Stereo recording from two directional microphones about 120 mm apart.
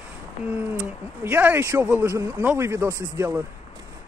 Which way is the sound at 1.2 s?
15° right (ahead or behind).